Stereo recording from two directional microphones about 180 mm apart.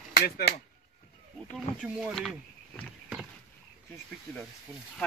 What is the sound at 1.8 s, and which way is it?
Speech, 5° right (ahead or behind).